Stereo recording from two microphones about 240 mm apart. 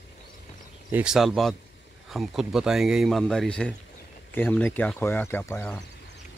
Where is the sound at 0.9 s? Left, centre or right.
Centre.